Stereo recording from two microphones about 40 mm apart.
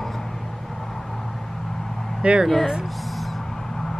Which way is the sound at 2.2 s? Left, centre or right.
Right.